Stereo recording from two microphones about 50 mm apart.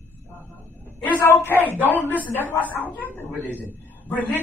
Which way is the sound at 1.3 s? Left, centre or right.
Left.